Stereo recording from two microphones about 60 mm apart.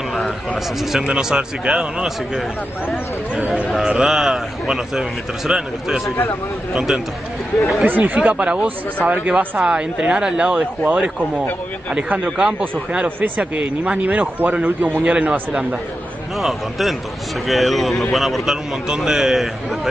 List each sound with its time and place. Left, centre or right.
0.9 s a man's voice: centre
3.3 s a man's voice: centre
6.0 s speech: left
7.8 s speech: right
9.6 s a man's voice: centre
12.4 s a man's voice: centre
16.3 s a man's voice: centre